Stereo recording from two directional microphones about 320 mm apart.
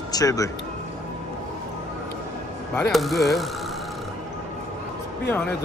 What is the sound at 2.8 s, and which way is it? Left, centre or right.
Speech, centre.